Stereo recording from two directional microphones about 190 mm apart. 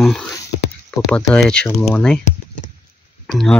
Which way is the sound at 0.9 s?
15° left (ahead or behind).